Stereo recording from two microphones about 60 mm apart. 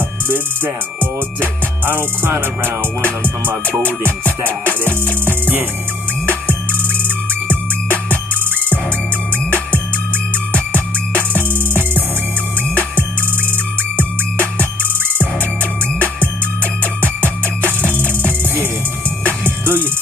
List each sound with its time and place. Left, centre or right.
1.9 s music: right
19.4 s music: right